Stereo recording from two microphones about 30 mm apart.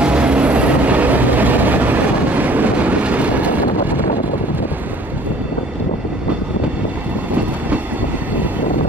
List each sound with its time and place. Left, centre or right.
0.0 s vehicle: right